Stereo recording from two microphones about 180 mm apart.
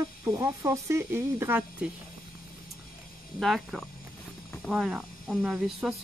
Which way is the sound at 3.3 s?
Centre (ahead or behind).